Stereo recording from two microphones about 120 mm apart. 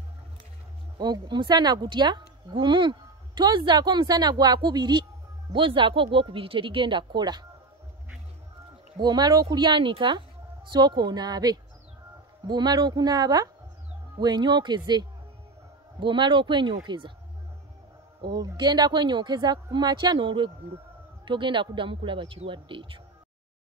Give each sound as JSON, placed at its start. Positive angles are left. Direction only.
{"t": 0.9, "sound": "a woman's voice", "side_deg": -35}
{"t": 9.0, "sound": "a woman's voice", "side_deg": -35}
{"t": 18.3, "sound": "a woman's voice", "side_deg": -35}